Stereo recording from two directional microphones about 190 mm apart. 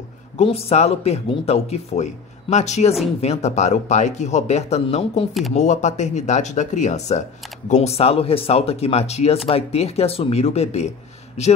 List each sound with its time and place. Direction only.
0.4 s speech: 35° left (ahead or behind)